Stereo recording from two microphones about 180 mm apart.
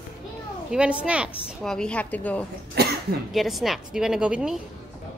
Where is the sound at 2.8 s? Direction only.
60° right (ahead or behind).